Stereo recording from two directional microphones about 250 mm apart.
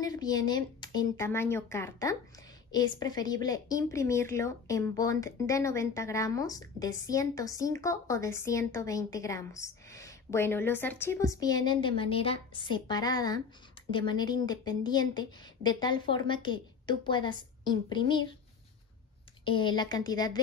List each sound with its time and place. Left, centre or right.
0.0 s a woman's voice: centre
19.4 s a woman's voice: centre